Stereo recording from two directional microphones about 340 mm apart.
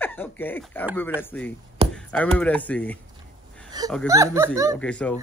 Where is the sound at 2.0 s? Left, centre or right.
Centre.